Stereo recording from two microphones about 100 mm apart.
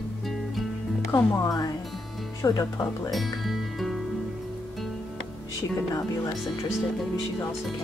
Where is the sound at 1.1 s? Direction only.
30° left (ahead or behind).